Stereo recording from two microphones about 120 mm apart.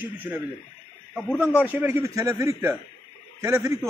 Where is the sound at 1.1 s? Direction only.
5° left (ahead or behind).